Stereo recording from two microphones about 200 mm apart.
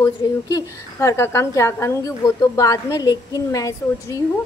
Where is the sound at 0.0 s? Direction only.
15° left (ahead or behind).